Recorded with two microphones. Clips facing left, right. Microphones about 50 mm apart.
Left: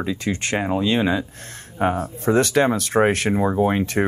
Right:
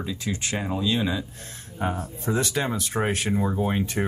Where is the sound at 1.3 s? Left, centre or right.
Left.